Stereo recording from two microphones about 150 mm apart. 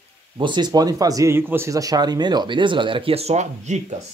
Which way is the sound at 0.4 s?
30° right (ahead or behind).